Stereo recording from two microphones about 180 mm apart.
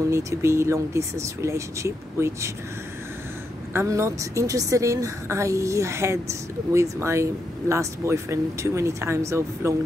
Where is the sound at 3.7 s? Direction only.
15° right (ahead or behind).